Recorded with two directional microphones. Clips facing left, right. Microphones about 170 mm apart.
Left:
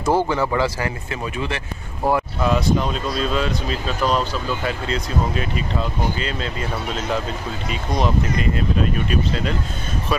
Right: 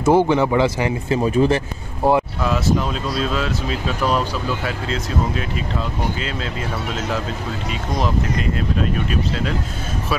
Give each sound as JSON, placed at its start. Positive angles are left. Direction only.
{"t": 0.0, "sound": "speech", "side_deg": -20}
{"t": 1.2, "sound": "speech", "side_deg": -35}
{"t": 2.4, "sound": "speech", "side_deg": 0}
{"t": 8.0, "sound": "speech", "side_deg": 0}